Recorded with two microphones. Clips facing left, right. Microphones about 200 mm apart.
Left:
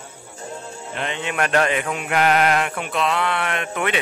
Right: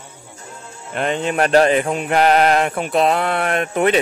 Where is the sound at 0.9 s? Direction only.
40° right (ahead or behind).